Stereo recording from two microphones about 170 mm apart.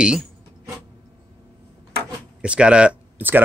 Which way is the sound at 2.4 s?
5° right (ahead or behind).